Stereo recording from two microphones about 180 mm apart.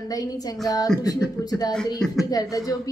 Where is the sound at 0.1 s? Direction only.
20° left (ahead or behind).